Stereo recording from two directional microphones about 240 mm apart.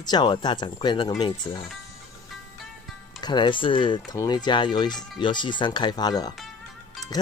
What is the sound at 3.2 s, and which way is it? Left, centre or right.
Speech, centre.